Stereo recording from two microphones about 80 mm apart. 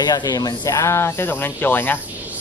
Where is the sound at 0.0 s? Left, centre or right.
Left.